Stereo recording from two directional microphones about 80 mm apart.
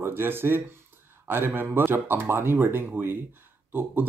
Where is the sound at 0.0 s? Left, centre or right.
Right.